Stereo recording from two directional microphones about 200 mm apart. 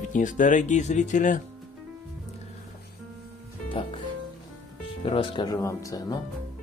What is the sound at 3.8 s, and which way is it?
Music, 25° left (ahead or behind).